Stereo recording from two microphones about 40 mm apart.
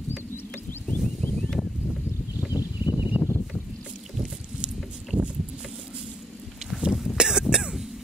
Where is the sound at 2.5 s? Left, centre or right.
Right.